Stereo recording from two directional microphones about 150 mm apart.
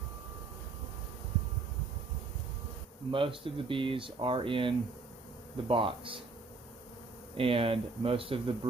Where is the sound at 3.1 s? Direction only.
35° right (ahead or behind).